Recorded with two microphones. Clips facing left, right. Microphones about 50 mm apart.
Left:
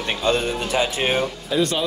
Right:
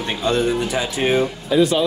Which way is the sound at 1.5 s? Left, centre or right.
Centre.